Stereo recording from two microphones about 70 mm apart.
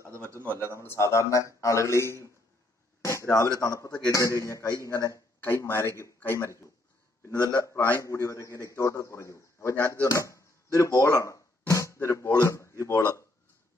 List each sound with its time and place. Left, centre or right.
0.1 s a man's voice: right
0.8 s a man's voice: left
3.0 s a sound: left
3.5 s a man's voice: left
5.7 s a man's voice: left